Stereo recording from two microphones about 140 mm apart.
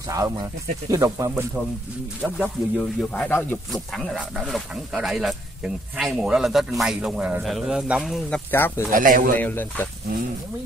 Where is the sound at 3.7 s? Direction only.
Centre (ahead or behind).